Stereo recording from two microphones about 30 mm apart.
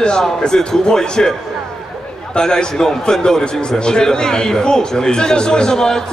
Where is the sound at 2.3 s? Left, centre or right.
Left.